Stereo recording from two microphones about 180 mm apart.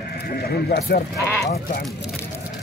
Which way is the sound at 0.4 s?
60° left (ahead or behind).